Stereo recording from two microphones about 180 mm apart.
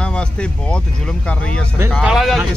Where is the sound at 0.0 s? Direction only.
5° left (ahead or behind).